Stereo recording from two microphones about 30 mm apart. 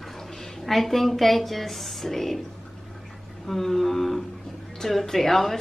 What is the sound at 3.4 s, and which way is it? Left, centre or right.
A woman's voice, centre.